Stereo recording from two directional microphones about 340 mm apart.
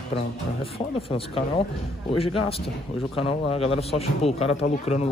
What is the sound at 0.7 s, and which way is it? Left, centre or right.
A man's voice, centre.